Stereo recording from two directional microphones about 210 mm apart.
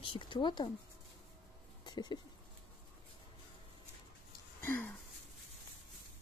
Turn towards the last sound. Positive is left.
turn(degrees=5)  # may be behind; listen again after turning